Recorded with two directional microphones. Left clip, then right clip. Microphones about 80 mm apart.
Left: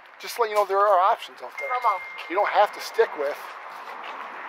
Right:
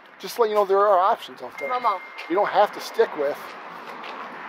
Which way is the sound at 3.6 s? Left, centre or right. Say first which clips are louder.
Even; right.